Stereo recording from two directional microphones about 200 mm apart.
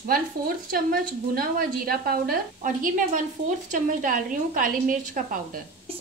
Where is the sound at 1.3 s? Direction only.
50° right (ahead or behind).